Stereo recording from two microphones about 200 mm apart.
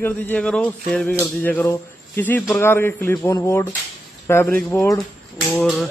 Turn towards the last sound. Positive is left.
turn(degrees=0)  # may be behind; listen again after turning